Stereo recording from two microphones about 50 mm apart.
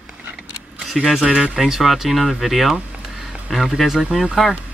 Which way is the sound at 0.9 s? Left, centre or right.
Centre.